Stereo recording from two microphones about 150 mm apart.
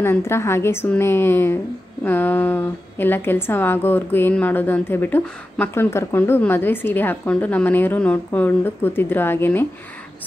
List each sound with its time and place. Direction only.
0.0 s a woman's voice: 15° left (ahead or behind)